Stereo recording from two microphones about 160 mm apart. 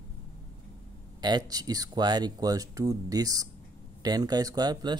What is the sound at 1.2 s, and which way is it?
Speech, 25° right (ahead or behind).